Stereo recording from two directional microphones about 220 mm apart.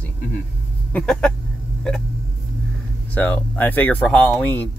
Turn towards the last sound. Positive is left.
turn(degrees=10)  # may be behind; listen again after turning